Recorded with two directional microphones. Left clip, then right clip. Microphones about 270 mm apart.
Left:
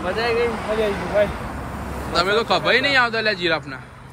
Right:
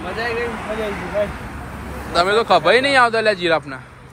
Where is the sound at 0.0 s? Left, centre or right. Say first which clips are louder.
Left 2 dB; centre.